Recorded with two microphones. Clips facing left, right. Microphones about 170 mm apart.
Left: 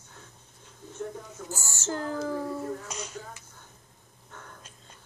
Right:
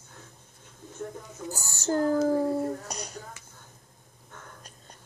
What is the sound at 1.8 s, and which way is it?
Speech, 40° right (ahead or behind).